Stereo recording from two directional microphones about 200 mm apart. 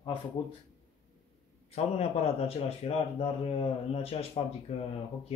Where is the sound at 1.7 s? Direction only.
30° left (ahead or behind).